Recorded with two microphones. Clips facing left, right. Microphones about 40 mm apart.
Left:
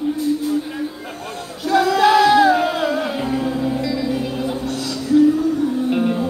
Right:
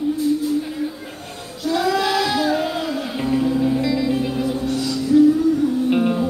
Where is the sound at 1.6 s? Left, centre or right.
Left.